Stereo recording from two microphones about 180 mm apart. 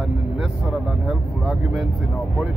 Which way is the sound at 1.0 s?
5° right (ahead or behind).